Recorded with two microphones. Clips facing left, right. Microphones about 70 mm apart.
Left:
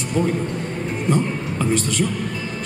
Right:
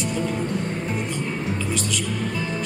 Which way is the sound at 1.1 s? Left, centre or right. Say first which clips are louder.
Left 6 dB; left.